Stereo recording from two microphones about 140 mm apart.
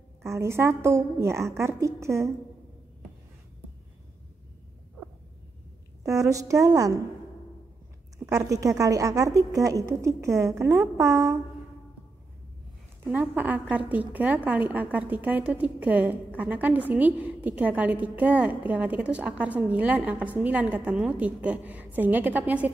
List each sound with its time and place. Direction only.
0.2 s a woman's voice: 20° right (ahead or behind)
6.0 s a woman's voice: 20° right (ahead or behind)
8.3 s a woman's voice: 25° right (ahead or behind)
13.1 s a woman's voice: 10° right (ahead or behind)